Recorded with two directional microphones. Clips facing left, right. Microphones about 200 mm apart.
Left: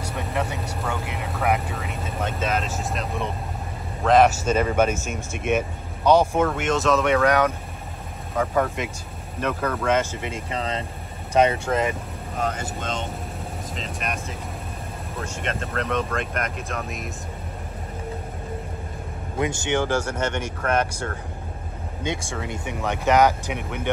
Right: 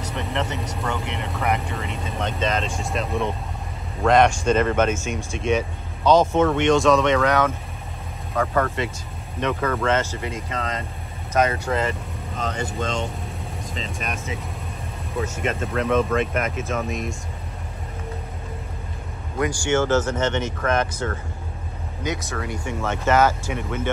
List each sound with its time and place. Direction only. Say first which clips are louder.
0.0 s speech: even; 10° left (ahead or behind)
9.8 s speech: left 3 dB; 15° left (ahead or behind)
11.7 s speech: left 1 dB; centre (ahead or behind)
19.3 s speech: right 2 dB; 25° left (ahead or behind)
22.0 s speech: right 1 dB; 25° left (ahead or behind)